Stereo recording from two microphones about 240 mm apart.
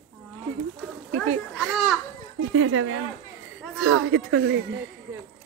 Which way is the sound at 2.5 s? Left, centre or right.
Right.